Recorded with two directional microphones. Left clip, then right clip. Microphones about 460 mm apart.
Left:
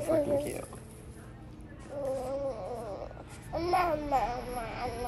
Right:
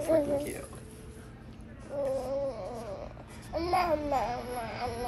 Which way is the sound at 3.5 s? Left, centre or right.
Centre.